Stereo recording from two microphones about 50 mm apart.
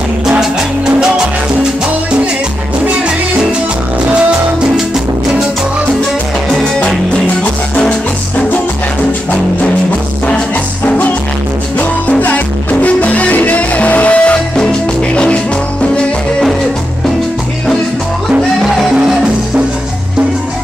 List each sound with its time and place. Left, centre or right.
0.4 s music: centre
12.8 s music: left
18.6 s music: centre